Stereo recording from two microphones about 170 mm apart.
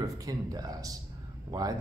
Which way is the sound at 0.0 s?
20° right (ahead or behind).